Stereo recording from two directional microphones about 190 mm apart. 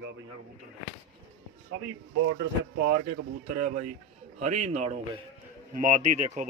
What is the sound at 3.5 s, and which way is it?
A man's voice, 40° right (ahead or behind).